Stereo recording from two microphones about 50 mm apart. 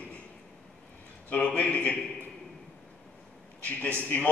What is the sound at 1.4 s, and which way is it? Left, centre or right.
Speech, left.